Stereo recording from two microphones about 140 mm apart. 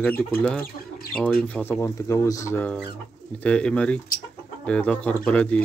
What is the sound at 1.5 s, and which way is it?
Speech, 15° left (ahead or behind).